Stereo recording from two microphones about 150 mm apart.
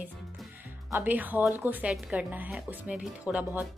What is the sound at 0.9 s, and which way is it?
Speech, 10° right (ahead or behind).